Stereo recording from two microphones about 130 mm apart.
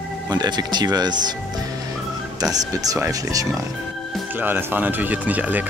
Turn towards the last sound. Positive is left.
turn(degrees=-10)  # may be behind; listen again after turning